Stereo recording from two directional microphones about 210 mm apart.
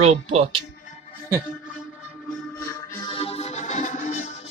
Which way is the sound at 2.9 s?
25° left (ahead or behind).